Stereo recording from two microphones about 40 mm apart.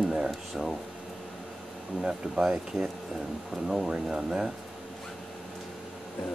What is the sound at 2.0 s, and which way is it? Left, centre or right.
Speech, centre.